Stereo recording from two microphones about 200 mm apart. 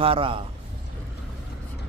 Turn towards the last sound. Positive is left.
turn(degrees=-25)  # may be behind; listen again after turning